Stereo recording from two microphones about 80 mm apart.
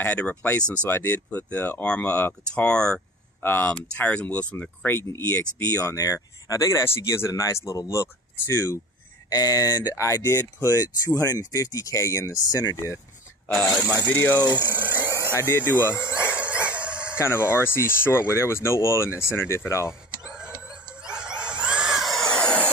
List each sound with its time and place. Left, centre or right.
0.0 s speech: centre
3.4 s speech: left
3.7 s speech: centre; by 8.7 s left
9.3 s speech: left
9.9 s speech: left
10.6 s speech: left
14.0 s speech: left
14.5 s speech: right
15.3 s speech: left
16.3 s dog: centre
17.2 s speech: left
19.9 s a sound: centre
22.3 s a sound: centre